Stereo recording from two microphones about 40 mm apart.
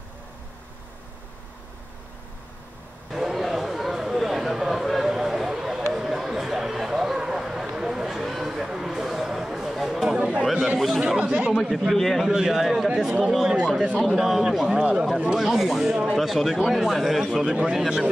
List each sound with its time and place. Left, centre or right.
3.1 s a sound: centre
10.0 s chatter: centre
11.1 s speech: right
11.9 s a man's voice: centre
12.3 s a man's voice: centre
14.8 s speech: right
15.3 s a man's voice: centre